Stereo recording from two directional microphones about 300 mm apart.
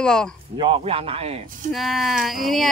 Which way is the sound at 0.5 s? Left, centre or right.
Centre.